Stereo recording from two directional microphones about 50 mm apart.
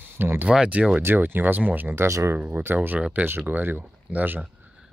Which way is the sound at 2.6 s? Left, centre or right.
Right.